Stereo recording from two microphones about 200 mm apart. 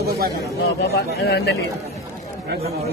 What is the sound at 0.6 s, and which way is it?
Speech, 50° left (ahead or behind).